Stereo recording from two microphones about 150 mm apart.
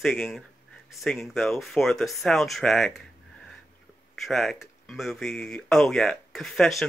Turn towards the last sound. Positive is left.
turn(degrees=0)  # may be behind; listen again after turning